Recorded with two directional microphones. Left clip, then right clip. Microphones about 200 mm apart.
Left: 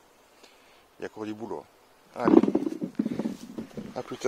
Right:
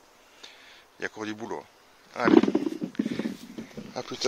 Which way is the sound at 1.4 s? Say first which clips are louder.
Right 1 dB; 20° right (ahead or behind).